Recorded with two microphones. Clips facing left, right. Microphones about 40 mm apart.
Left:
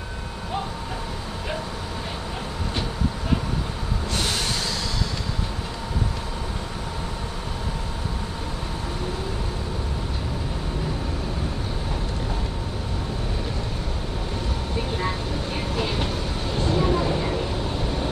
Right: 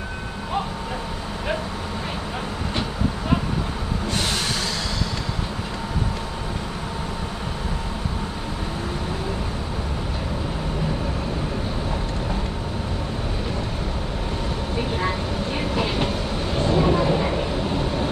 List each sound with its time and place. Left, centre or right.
15.0 s vehicle: centre